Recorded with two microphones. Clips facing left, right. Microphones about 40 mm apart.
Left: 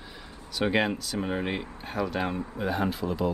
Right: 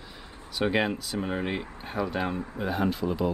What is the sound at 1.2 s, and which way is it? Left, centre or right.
Speech, centre.